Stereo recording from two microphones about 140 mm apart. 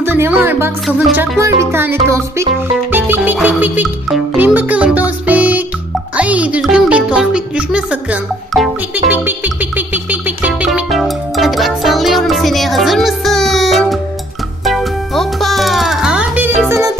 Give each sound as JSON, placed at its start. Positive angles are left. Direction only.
{"t": 0.0, "sound": "speech", "side_deg": -15}
{"t": 2.9, "sound": "music", "side_deg": -15}
{"t": 16.6, "sound": "music", "side_deg": -20}